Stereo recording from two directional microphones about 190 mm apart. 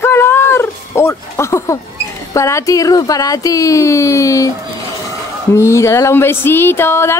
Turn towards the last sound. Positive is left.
turn(degrees=15)  # may be behind; listen again after turning